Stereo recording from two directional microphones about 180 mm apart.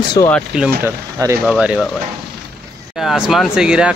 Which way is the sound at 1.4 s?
5° right (ahead or behind).